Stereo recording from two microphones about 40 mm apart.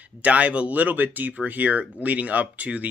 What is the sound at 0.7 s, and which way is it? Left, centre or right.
Speech, right.